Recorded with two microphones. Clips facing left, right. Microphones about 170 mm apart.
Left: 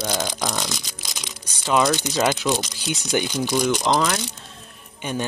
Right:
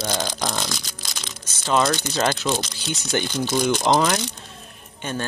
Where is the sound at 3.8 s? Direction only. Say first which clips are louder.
Right 2 dB; 20° right (ahead or behind).